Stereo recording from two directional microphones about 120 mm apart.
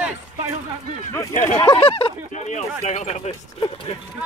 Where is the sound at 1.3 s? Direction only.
90° left.